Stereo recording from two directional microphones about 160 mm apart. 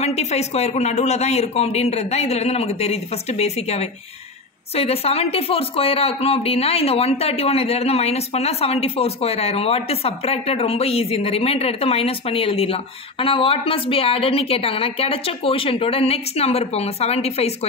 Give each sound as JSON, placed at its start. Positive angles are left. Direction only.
{"t": 0.0, "sound": "speech", "side_deg": 45}